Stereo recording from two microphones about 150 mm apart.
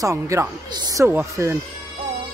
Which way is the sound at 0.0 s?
20° right (ahead or behind).